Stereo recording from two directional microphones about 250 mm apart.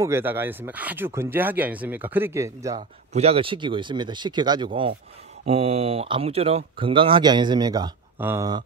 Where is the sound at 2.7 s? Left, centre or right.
Right.